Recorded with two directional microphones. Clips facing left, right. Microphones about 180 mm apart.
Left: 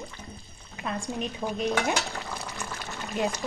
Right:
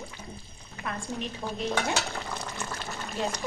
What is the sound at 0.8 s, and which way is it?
A woman's voice, 20° left (ahead or behind).